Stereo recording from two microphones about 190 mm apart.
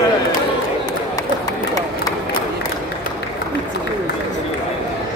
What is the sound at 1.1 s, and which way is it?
Run, 20° left (ahead or behind).